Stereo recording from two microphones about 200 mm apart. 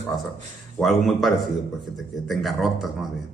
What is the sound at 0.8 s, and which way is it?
Speech, centre (ahead or behind).